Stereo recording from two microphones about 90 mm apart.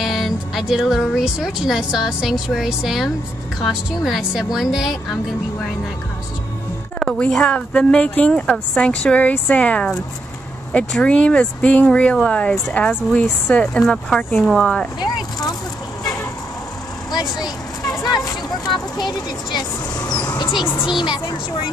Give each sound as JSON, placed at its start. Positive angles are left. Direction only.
{"t": 0.0, "sound": "a woman's voice", "side_deg": 0}
{"t": 7.0, "sound": "a woman's voice", "side_deg": 5}
{"t": 10.9, "sound": "a woman's voice", "side_deg": 10}
{"t": 15.0, "sound": "vehicle", "side_deg": 50}
{"t": 18.0, "sound": "vehicle", "side_deg": 45}
{"t": 21.0, "sound": "speech", "side_deg": 60}